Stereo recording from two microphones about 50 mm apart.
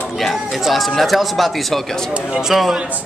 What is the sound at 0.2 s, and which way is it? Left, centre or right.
A man's voice, centre.